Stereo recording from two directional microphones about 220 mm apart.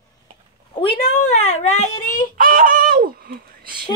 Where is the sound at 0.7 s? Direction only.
25° left (ahead or behind).